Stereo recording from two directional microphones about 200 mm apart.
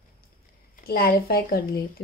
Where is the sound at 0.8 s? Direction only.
50° left (ahead or behind).